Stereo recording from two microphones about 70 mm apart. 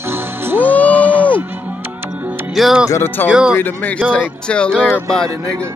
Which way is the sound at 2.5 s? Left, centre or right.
Centre.